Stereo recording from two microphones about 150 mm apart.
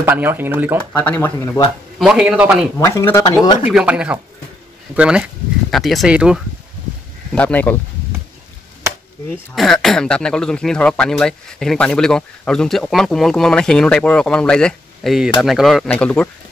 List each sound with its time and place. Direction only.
0.0 s speech: 15° right (ahead or behind)
0.9 s speech: 10° left (ahead or behind)
2.0 s speech: 5° right (ahead or behind)
2.8 s speech: 20° left (ahead or behind)
3.6 s speech: 5° right (ahead or behind)
7.3 s speech: 10° left (ahead or behind)
9.6 s speech: centre (ahead or behind)